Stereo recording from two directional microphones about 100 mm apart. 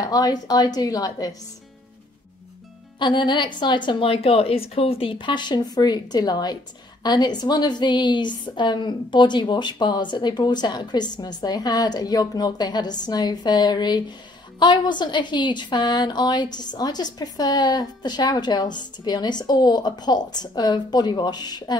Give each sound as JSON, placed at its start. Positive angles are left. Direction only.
{"t": 0.0, "sound": "a woman's voice", "side_deg": 40}
{"t": 3.0, "sound": "a woman's voice", "side_deg": 50}